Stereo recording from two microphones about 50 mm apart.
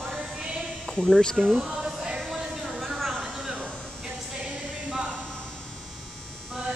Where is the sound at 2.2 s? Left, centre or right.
Centre.